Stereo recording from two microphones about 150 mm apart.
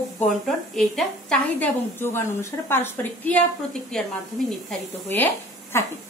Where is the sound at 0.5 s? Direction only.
Centre (ahead or behind).